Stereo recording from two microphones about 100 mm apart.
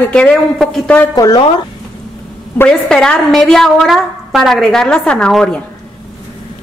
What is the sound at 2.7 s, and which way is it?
A woman's voice, 5° left (ahead or behind).